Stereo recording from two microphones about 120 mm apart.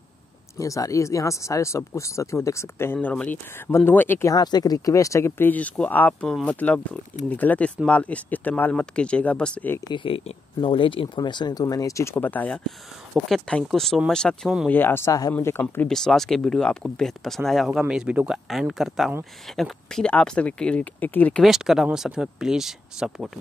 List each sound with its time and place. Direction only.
0.6 s speech: 25° left (ahead or behind)
4.3 s speech: 35° left (ahead or behind); by 9.8 s 10° left (ahead or behind)
9.8 s speech: 40° left (ahead or behind); by 12.7 s 10° left (ahead or behind)
13.1 s speech: 5° right (ahead or behind)
14.7 s speech: 15° left (ahead or behind)
15.9 s speech: 5° left (ahead or behind)
21.4 s speech: 5° right (ahead or behind)